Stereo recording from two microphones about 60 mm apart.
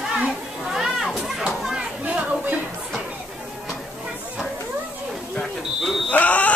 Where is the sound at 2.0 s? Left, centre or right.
Right.